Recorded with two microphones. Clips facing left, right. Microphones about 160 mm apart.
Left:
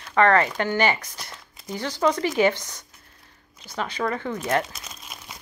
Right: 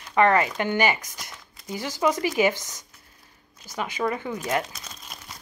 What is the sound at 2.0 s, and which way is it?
Speech, 10° right (ahead or behind).